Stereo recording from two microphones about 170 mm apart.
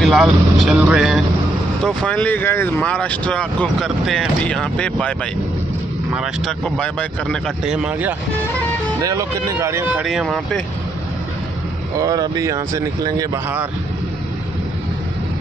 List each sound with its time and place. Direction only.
0.0 s speech: centre (ahead or behind)
9.0 s speech: 20° right (ahead or behind)
10.0 s speech: centre (ahead or behind)
12.0 s speech: 20° right (ahead or behind)